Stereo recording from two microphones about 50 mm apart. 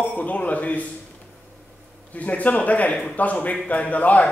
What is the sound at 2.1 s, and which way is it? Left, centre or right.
A man's voice, left.